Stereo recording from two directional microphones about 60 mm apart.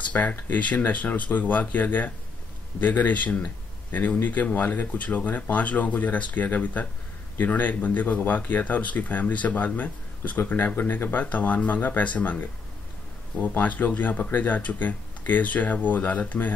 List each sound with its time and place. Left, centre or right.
0.1 s speech: left